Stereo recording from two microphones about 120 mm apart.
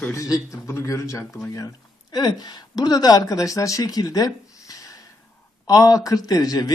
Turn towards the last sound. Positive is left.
turn(degrees=30)  # may be behind; listen again after turning